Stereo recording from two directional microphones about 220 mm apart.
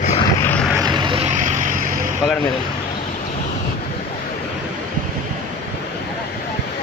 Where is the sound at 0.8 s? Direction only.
20° right (ahead or behind).